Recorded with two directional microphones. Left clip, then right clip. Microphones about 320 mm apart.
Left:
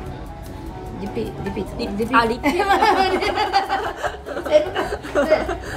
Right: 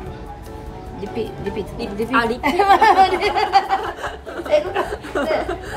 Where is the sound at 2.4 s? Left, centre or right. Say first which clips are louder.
Right 3 dB; right.